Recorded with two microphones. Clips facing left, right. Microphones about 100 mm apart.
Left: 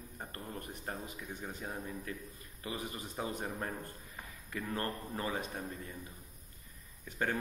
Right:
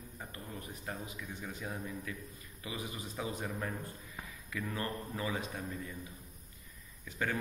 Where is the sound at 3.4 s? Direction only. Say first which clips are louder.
Even; 30° left (ahead or behind).